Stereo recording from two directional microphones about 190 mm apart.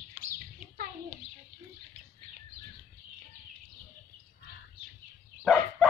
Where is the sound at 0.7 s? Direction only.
50° right (ahead or behind).